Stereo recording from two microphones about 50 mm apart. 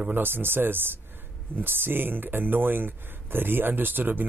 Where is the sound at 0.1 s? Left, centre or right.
Right.